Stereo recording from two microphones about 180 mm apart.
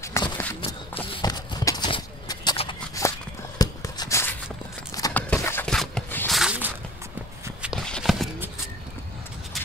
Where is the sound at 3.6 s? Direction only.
20° left (ahead or behind).